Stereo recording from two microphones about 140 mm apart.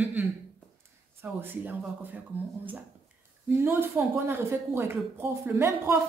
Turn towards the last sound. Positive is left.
turn(degrees=-15)  # may be behind; listen again after turning